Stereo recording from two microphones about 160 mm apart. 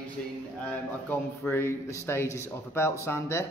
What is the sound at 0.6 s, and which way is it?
Speech, 10° left (ahead or behind).